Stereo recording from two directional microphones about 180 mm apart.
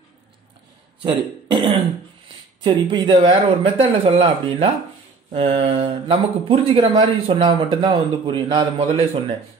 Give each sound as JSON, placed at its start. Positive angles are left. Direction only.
{"t": 1.0, "sound": "speech", "side_deg": -30}